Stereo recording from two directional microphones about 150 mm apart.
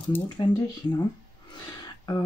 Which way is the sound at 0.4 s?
30° left (ahead or behind).